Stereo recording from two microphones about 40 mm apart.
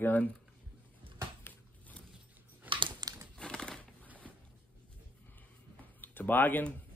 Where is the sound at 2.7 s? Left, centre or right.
Right.